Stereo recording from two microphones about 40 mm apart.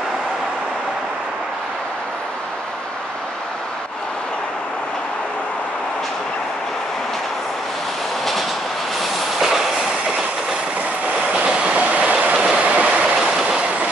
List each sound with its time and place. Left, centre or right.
9.4 s train: centre
11.3 s train: right
13.1 s train: centre